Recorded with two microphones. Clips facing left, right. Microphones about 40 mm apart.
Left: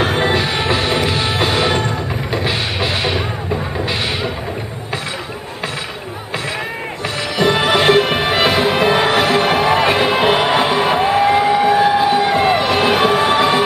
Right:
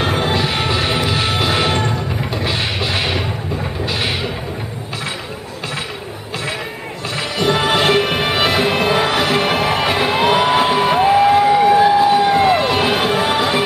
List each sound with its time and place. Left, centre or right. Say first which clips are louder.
0.0 s music: left 2 dB; centre
1.5 s music: left 1 dB; centre
2.4 s music: even; centre
3.0 s a sound: left 1 dB; centre
7.3 s music: left 2 dB; centre
12.8 s music: left 3 dB; centre